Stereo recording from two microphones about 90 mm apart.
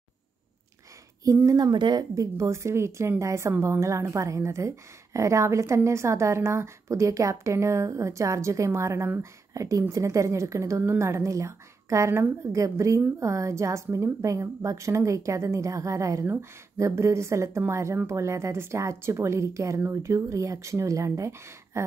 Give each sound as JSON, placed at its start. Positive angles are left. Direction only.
{"t": 1.2, "sound": "a woman's voice", "side_deg": -35}
{"t": 1.7, "sound": "speech", "side_deg": -55}
{"t": 2.3, "sound": "a woman's voice", "side_deg": -35}